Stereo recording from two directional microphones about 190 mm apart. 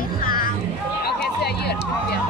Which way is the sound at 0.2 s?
50° left (ahead or behind).